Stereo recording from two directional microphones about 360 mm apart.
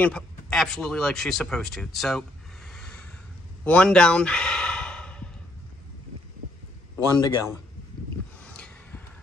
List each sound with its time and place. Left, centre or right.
0.0 s speech: centre
3.6 s sigh: centre
7.2 s a man's voice: left
8.4 s a sound: centre